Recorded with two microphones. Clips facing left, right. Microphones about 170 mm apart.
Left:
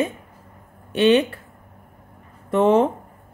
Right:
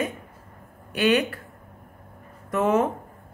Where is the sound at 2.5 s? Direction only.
30° left (ahead or behind).